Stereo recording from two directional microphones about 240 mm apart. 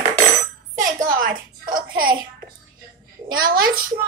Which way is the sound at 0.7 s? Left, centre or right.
Right.